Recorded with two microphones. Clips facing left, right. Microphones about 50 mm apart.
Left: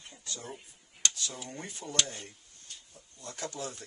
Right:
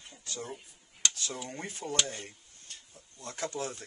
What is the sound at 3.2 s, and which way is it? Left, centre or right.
Speech, right.